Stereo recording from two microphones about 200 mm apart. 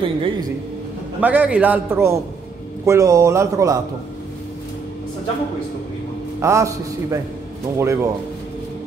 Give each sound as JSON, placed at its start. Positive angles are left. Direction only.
{"t": 0.0, "sound": "a man's voice", "side_deg": -25}
{"t": 1.2, "sound": "a man's voice", "side_deg": -5}
{"t": 6.4, "sound": "a man's voice", "side_deg": -15}